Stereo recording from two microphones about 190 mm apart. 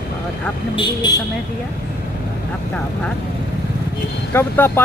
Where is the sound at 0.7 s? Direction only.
25° left (ahead or behind).